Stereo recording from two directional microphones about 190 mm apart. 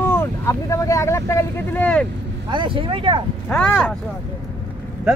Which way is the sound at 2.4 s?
25° right (ahead or behind).